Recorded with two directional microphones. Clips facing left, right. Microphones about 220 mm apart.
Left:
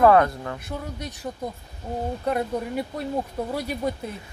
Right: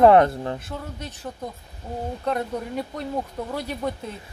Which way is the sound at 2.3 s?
10° left (ahead or behind).